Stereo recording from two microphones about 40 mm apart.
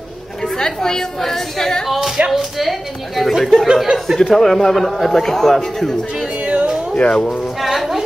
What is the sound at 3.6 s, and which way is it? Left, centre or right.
Speech, centre.